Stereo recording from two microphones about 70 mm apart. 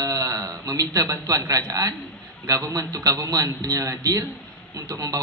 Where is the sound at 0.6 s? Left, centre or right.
Right.